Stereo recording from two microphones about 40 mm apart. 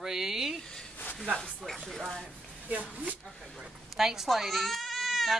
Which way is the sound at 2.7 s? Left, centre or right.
Right.